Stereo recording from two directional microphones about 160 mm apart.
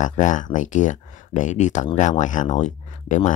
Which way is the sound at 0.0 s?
50° left (ahead or behind).